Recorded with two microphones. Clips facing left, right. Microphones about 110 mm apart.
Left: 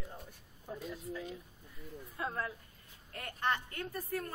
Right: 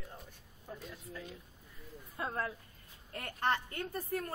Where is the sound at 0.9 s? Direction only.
10° left (ahead or behind).